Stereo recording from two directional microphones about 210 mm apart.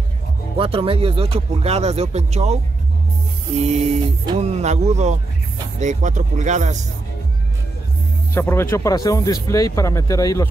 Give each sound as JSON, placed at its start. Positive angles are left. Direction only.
{"t": 0.6, "sound": "speech", "side_deg": -25}
{"t": 8.4, "sound": "speech", "side_deg": 10}